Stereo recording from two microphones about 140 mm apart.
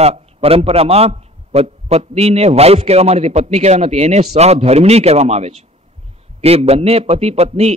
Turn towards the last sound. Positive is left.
turn(degrees=-50)  # may be behind; listen again after turning